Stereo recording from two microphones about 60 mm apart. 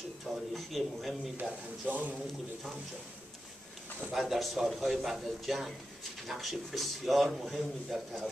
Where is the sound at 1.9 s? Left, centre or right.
Right.